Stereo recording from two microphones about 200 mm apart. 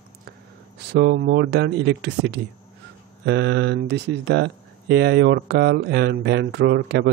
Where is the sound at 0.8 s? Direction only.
55° right (ahead or behind).